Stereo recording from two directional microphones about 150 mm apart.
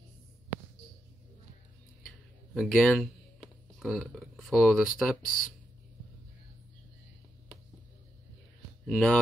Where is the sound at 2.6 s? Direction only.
Centre (ahead or behind).